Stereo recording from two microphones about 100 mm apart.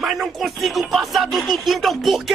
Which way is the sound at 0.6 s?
Centre (ahead or behind).